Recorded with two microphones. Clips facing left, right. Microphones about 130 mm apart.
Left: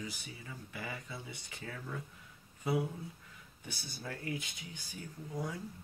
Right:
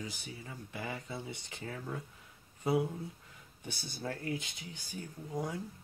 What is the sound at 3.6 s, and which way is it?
Speech, 30° right (ahead or behind).